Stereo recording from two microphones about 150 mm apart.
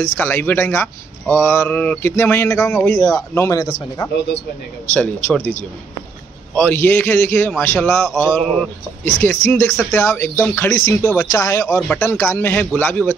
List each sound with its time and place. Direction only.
0.0 s speech: 15° left (ahead or behind)
4.9 s speech: 10° left (ahead or behind)